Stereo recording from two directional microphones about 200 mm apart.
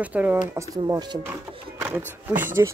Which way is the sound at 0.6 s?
20° right (ahead or behind).